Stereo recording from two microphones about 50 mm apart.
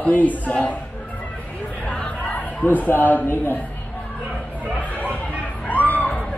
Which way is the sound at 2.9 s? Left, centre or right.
Left.